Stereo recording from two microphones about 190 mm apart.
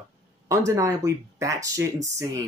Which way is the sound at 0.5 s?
15° right (ahead or behind).